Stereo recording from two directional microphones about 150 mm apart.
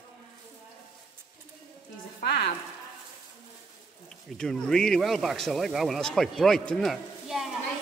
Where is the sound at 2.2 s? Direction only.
90° left.